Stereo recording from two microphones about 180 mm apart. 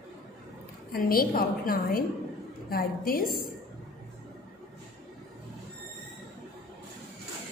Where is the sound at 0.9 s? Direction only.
55° left (ahead or behind).